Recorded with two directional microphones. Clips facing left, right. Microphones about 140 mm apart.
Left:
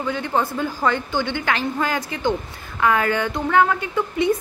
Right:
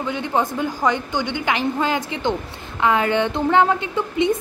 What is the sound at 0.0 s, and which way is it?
A woman's voice, 20° right (ahead or behind).